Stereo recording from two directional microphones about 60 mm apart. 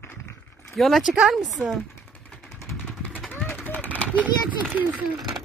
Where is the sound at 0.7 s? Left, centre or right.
Centre.